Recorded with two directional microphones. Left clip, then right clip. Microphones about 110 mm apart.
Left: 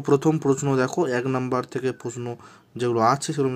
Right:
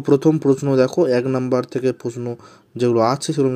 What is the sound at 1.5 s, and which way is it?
Speech, 15° right (ahead or behind).